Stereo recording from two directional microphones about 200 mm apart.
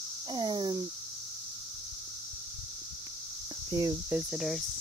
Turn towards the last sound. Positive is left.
turn(degrees=0)  # may be behind; listen again after turning